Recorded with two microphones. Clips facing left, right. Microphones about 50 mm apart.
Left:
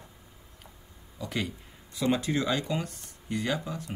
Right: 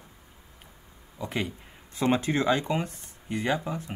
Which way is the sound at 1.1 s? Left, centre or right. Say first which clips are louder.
Right 2 dB; right.